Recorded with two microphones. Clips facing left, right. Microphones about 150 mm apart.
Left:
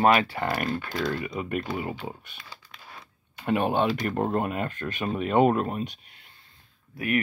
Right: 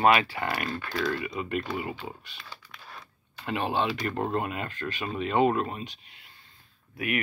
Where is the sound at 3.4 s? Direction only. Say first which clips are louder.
Left 4 dB; 55° left (ahead or behind).